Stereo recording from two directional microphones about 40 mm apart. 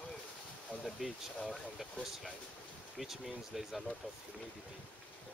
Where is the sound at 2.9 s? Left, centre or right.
Centre.